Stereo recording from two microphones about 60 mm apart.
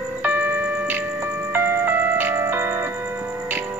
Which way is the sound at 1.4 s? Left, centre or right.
Right.